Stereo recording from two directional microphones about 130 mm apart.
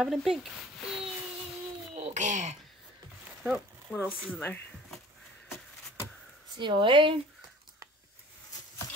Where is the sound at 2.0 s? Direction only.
65° right (ahead or behind).